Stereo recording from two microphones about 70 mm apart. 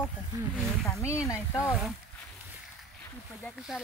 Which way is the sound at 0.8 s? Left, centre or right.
Left.